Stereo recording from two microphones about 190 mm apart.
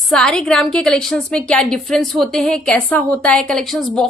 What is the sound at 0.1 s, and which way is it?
A woman's voice, 5° left (ahead or behind).